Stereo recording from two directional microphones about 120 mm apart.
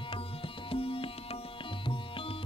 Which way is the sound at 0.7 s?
50° left (ahead or behind).